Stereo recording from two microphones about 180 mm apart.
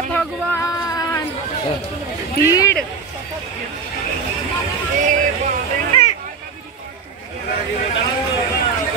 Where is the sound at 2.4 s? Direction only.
20° left (ahead or behind).